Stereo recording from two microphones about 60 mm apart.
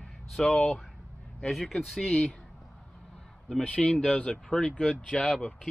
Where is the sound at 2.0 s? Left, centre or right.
Left.